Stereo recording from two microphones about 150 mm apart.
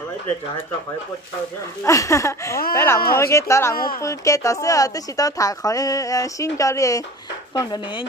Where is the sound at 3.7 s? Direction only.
75° left (ahead or behind).